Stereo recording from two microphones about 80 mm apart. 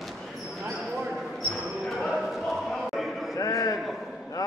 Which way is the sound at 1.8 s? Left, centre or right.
Centre.